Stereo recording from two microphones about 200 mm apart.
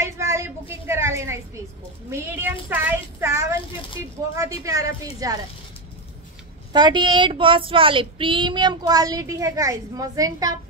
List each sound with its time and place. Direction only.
0.0 s a sound: 15° right (ahead or behind)
2.0 s a woman's voice: 10° right (ahead or behind)
4.6 s a woman's voice: 15° right (ahead or behind)
6.7 s child singing: 20° right (ahead or behind)